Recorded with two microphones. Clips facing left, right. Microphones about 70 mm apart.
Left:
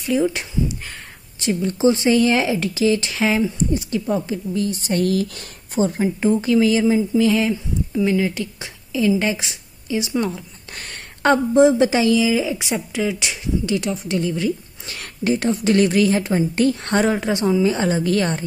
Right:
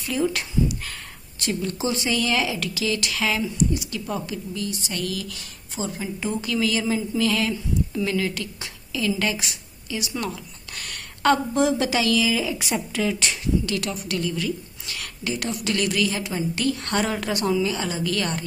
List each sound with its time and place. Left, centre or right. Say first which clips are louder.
0.3 s a woman's voice: even; left
6.4 s a woman's voice: left 7 dB; left